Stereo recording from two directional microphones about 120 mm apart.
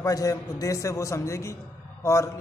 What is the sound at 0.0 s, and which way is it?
A man's voice, 30° left (ahead or behind).